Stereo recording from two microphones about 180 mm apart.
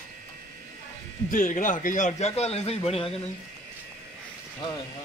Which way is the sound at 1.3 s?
45° left (ahead or behind).